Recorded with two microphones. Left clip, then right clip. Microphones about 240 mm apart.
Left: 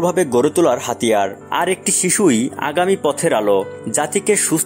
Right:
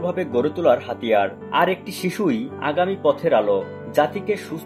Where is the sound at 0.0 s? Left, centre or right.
Left.